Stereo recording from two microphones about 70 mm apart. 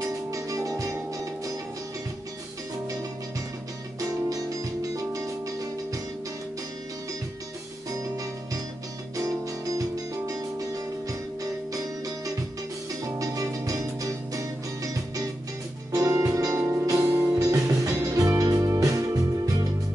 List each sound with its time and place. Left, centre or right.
0.3 s music: right
4.9 s music: right
9.1 s music: right
13.2 s music: right
16.5 s music: right
16.8 s music: right